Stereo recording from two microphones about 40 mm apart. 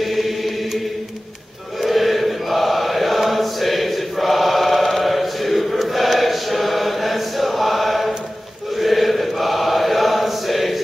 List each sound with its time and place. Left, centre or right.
0.0 s chant: centre
1.8 s choir: centre
8.7 s chant: centre